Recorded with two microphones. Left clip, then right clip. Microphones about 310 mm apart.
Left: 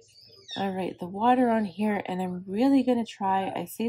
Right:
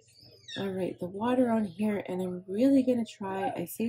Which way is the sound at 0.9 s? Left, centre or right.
Left.